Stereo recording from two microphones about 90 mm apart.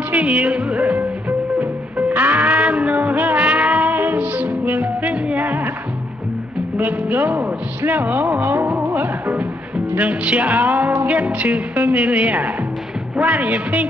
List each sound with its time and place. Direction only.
0.1 s music: 15° right (ahead or behind)
6.8 s a man's voice: 15° right (ahead or behind)